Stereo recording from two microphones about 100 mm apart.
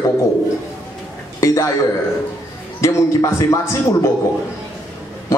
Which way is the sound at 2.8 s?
30° left (ahead or behind).